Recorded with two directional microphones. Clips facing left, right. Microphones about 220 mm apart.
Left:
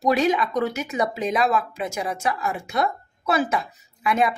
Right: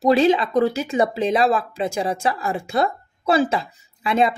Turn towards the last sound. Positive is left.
turn(degrees=-25)  # may be behind; listen again after turning